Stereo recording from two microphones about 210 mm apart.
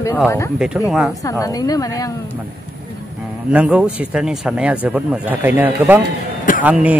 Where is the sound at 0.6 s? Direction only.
5° right (ahead or behind).